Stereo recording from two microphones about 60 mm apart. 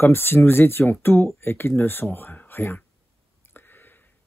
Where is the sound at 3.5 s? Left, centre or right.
Left.